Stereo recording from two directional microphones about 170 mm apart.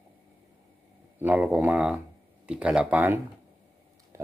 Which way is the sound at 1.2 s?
10° right (ahead or behind).